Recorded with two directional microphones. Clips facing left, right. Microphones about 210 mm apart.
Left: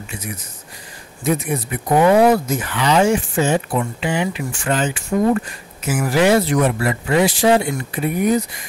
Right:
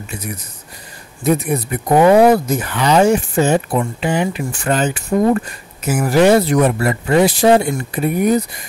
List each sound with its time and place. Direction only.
1.2 s speech: 40° right (ahead or behind)